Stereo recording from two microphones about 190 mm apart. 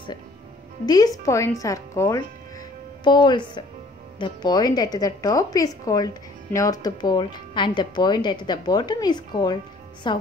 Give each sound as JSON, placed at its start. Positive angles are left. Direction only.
{"t": 0.8, "sound": "a woman's voice", "side_deg": 20}